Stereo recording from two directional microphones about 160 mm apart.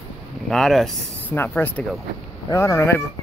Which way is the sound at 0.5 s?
Centre (ahead or behind).